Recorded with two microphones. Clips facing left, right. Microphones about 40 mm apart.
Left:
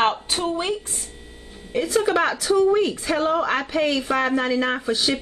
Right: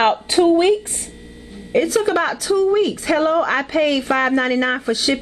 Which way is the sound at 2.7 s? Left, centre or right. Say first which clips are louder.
Right 4 dB; right.